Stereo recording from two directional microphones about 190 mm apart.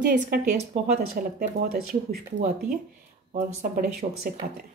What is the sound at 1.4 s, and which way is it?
Speech, 50° right (ahead or behind).